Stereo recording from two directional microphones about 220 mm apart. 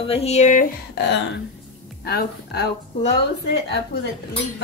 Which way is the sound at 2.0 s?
45° left (ahead or behind).